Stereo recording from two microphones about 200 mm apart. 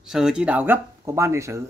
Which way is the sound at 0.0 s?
5° right (ahead or behind).